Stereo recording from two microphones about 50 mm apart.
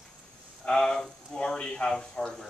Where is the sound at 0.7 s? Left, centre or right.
Centre.